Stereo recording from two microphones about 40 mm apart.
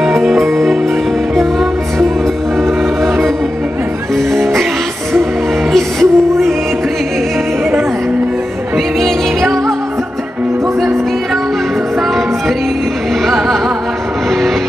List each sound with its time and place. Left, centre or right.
1.3 s music: centre
5.7 s music: centre
9.0 s music: centre